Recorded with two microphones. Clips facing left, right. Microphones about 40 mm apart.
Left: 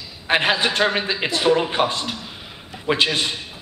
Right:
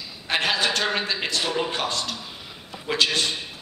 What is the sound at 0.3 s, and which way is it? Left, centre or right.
A man's voice, left.